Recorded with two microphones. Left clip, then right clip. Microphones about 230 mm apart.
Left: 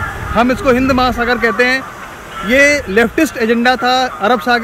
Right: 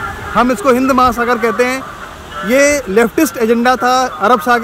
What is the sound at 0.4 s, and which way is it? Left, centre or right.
Speech, centre.